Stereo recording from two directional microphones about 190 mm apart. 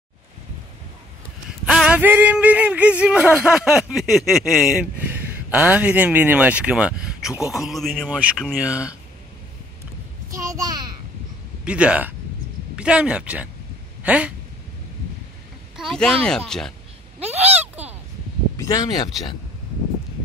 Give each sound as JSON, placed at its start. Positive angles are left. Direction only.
{"t": 1.7, "sound": "speech", "side_deg": -5}
{"t": 10.3, "sound": "a sound", "side_deg": -20}
{"t": 11.6, "sound": "speech", "side_deg": -5}
{"t": 15.7, "sound": "speech", "side_deg": 0}
{"t": 17.6, "sound": "a sound", "side_deg": -10}
{"t": 18.6, "sound": "speech", "side_deg": 20}